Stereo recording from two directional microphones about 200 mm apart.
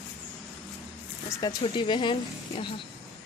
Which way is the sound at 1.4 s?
20° left (ahead or behind).